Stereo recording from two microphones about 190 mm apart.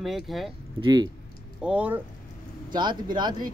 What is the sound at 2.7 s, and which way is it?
Speech, 25° right (ahead or behind).